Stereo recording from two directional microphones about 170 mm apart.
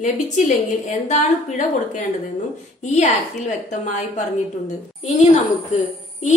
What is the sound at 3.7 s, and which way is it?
Speech, 45° left (ahead or behind).